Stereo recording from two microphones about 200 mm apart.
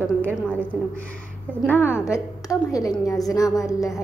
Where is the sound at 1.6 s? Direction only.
10° left (ahead or behind).